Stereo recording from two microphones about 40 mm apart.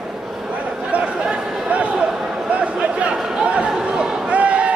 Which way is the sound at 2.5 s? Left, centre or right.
Right.